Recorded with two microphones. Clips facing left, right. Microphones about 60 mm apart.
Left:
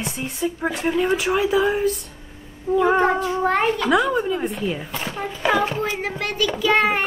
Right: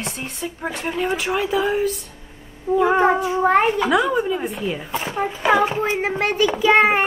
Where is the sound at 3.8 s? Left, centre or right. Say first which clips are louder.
Even; centre.